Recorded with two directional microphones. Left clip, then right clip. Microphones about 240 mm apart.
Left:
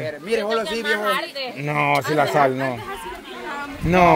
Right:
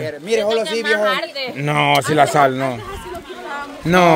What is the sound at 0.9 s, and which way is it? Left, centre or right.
Speech, right.